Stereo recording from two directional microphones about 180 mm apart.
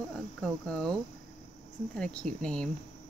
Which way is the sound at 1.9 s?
5° left (ahead or behind).